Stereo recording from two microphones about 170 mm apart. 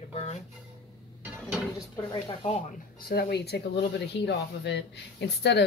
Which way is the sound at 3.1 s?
70° left (ahead or behind).